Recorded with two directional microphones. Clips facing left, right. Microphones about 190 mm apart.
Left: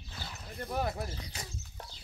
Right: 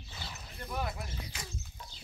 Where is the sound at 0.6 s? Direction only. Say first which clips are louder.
Left 4 dB; 40° left (ahead or behind).